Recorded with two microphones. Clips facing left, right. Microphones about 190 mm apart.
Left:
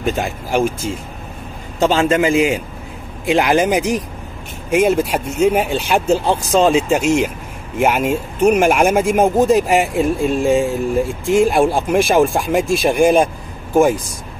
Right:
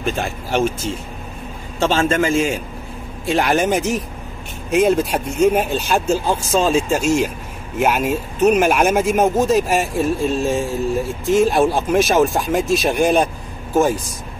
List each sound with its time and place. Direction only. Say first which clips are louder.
0.0 s speech: left 2 dB; 15° left (ahead or behind)